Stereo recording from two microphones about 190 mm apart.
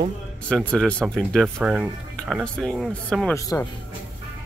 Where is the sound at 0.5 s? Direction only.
5° left (ahead or behind).